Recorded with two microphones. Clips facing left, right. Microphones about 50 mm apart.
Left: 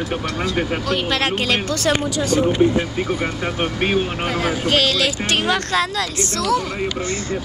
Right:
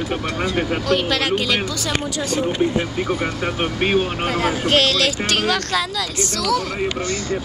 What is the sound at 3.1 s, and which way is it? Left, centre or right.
Speech, centre.